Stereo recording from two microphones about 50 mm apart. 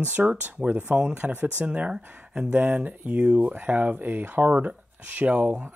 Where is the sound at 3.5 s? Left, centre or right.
Right.